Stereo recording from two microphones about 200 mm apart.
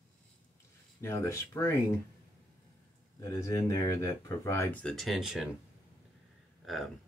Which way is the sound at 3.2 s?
15° left (ahead or behind).